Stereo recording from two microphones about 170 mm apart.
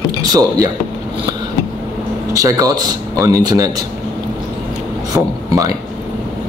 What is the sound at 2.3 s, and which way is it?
Speech, 20° right (ahead or behind).